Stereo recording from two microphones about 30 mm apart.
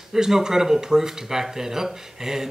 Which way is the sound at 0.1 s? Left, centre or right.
Centre.